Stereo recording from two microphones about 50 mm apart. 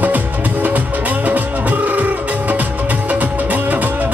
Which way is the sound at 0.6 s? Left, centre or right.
Right.